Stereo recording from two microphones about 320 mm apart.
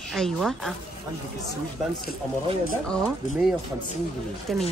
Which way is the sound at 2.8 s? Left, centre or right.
Centre.